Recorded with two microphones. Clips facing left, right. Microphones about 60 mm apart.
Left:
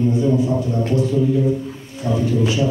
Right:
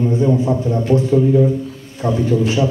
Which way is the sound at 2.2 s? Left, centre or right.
Right.